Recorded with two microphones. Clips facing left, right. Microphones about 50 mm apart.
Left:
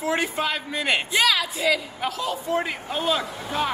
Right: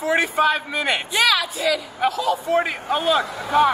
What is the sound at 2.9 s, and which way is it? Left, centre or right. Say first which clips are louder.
Speech: right 5 dB; right.